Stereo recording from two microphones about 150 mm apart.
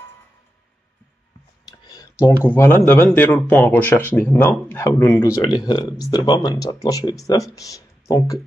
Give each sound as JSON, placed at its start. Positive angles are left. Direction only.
{"t": 1.7, "sound": "speech", "side_deg": 25}
{"t": 5.4, "sound": "speech", "side_deg": 30}